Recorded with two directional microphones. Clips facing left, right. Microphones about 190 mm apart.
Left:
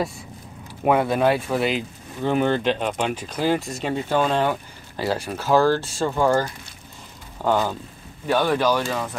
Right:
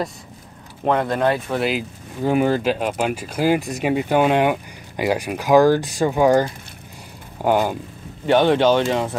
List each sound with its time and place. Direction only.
0.8 s speech: 10° left (ahead or behind); by 7.7 s 15° right (ahead or behind)
8.3 s speech: 25° right (ahead or behind)